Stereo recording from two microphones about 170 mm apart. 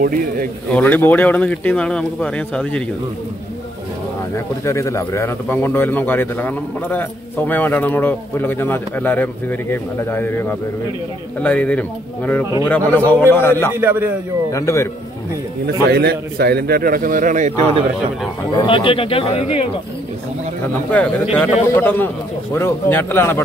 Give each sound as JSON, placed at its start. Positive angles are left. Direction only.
{"t": 0.0, "sound": "a man's voice", "side_deg": -55}
{"t": 0.7, "sound": "a man's voice", "side_deg": 10}
{"t": 4.6, "sound": "a man's voice", "side_deg": 15}
{"t": 13.0, "sound": "a man's voice", "side_deg": -15}
{"t": 13.3, "sound": "a man's voice", "side_deg": 15}
{"t": 13.7, "sound": "a man's voice", "side_deg": -10}
{"t": 14.5, "sound": "a man's voice", "side_deg": 15}
{"t": 15.6, "sound": "a man's voice", "side_deg": -70}
{"t": 18.6, "sound": "speech", "side_deg": 30}
{"t": 20.9, "sound": "a man's voice", "side_deg": 10}